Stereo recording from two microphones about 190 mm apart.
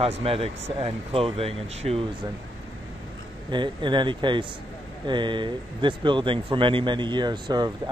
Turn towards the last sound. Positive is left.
turn(degrees=-20)  # may be behind; listen again after turning